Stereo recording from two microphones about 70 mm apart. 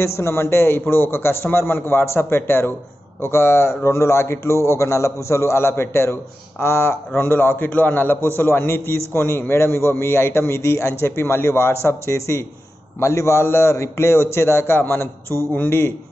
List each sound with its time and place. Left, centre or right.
0.0 s a man's voice: left